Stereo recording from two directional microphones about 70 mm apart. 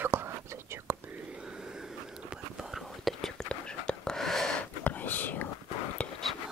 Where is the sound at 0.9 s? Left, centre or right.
Right.